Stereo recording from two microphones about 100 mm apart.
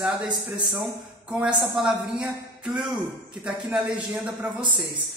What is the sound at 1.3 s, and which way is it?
A woman's voice, 10° right (ahead or behind).